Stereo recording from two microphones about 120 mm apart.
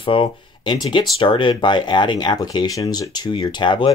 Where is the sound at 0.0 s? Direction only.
45° left (ahead or behind).